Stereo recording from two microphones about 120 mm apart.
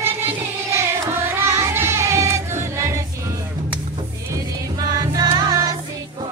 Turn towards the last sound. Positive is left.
turn(degrees=-30)  # may be behind; listen again after turning